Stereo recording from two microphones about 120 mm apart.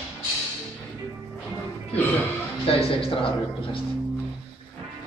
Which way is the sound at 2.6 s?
50° left (ahead or behind).